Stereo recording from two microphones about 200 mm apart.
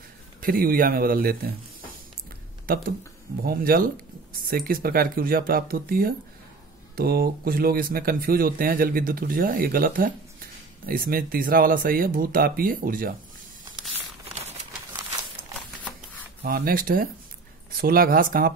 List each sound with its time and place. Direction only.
0.4 s a man's voice: 45° right (ahead or behind)
2.6 s a man's voice: 45° right (ahead or behind)
14.2 s crumpling: 35° right (ahead or behind)
16.4 s a man's voice: 45° right (ahead or behind)